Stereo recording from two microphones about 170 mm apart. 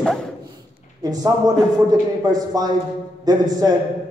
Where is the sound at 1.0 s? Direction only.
20° right (ahead or behind).